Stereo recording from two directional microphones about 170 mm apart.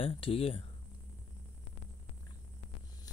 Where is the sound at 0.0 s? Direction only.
35° left (ahead or behind).